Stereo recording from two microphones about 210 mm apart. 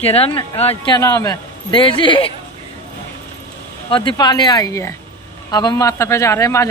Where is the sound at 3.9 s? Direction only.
25° left (ahead or behind).